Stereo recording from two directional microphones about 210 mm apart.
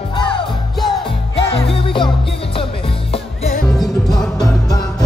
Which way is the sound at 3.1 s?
30° left (ahead or behind).